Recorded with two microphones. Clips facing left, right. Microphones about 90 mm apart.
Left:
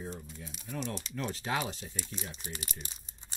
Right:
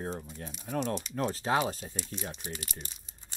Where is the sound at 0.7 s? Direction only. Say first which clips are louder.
Right 6 dB; 45° right (ahead or behind).